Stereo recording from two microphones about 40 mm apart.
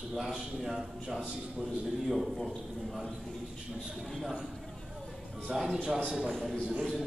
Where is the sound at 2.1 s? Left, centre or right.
Centre.